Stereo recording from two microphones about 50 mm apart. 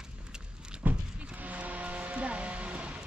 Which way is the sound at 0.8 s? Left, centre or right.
Right.